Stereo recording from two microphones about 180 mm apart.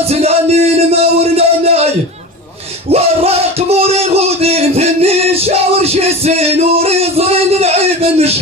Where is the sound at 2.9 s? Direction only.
35° right (ahead or behind).